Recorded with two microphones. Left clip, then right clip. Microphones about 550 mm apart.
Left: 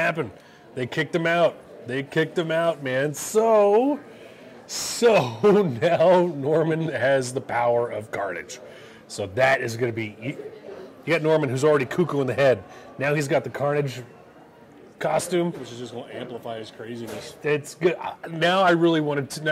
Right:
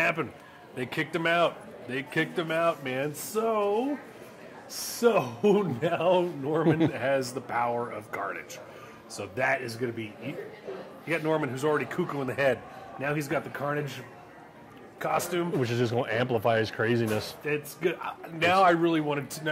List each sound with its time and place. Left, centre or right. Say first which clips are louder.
0.0 s a man's voice: left 3 dB; left
5.4 s a man's voice: left 6 dB; left
15.0 s a man's voice: left 5 dB; left
15.6 s speech: right 8 dB; right
17.5 s a man's voice: left 8 dB; left